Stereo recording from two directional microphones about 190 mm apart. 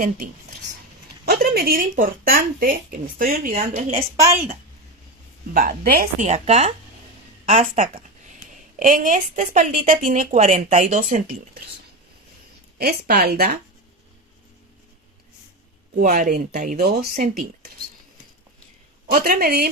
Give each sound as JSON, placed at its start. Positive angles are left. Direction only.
{"t": 1.2, "sound": "speech", "side_deg": -55}
{"t": 5.5, "sound": "a woman's voice", "side_deg": -50}
{"t": 12.7, "sound": "speech", "side_deg": -55}
{"t": 15.9, "sound": "speech", "side_deg": -40}
{"t": 19.0, "sound": "speech", "side_deg": -50}